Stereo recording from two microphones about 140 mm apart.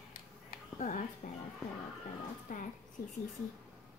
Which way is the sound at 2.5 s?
75° left (ahead or behind).